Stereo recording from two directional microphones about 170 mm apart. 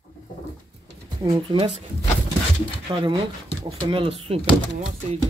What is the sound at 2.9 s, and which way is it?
Speech, 30° right (ahead or behind).